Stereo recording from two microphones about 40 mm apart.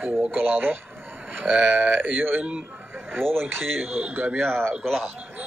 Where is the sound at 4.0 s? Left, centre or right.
Right.